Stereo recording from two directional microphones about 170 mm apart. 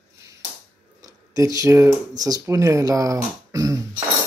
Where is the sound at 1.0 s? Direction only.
20° right (ahead or behind).